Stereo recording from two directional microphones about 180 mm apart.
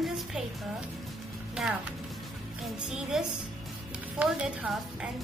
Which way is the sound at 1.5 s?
5° right (ahead or behind).